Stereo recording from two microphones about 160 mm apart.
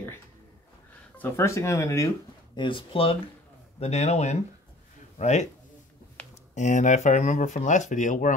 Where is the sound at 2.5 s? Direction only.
30° left (ahead or behind); by 5.5 s 45° left (ahead or behind).